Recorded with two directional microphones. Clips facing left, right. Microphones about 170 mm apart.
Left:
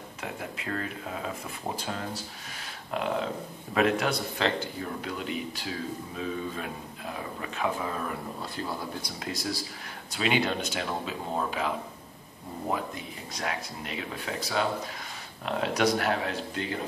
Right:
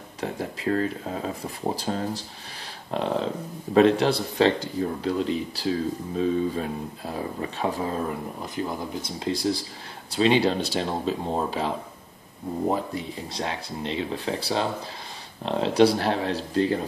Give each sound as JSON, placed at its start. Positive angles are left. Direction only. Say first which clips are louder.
{"t": 0.2, "sound": "speech", "louder": "right 8 dB", "side_deg": -35}
{"t": 8.4, "sound": "speech", "louder": "right 4 dB", "side_deg": -15}